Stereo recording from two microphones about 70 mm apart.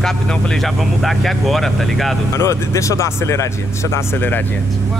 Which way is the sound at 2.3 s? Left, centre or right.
Left.